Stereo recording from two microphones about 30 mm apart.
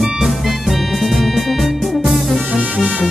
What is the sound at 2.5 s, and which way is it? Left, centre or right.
Music, right.